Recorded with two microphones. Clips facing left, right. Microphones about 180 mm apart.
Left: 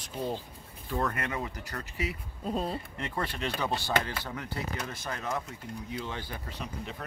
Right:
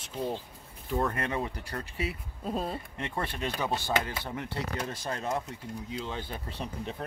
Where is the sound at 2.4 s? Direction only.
Centre (ahead or behind).